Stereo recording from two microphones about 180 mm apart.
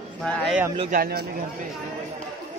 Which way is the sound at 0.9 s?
55° right (ahead or behind).